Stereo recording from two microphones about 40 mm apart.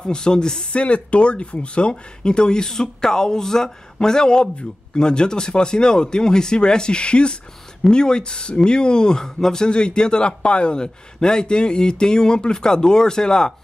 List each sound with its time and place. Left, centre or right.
0.0 s speech: left
0.7 s speech: left